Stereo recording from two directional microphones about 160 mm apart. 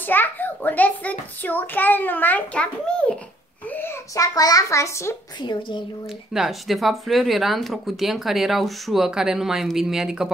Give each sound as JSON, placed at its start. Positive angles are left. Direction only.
{"t": 0.0, "sound": "a child's voice", "side_deg": 10}
{"t": 5.4, "sound": "speech", "side_deg": 30}
{"t": 6.0, "sound": "speech", "side_deg": -5}